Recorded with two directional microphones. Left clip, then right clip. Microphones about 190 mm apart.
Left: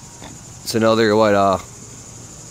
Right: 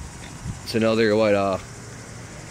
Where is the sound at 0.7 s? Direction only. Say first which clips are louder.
Left 5 dB; 40° left (ahead or behind).